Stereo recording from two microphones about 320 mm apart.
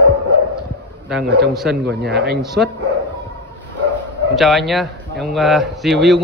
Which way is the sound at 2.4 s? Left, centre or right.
Centre.